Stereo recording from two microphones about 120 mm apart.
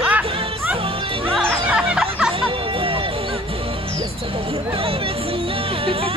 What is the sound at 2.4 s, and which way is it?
Music, 50° right (ahead or behind).